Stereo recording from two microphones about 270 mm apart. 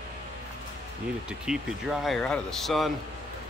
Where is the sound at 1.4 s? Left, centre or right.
Centre.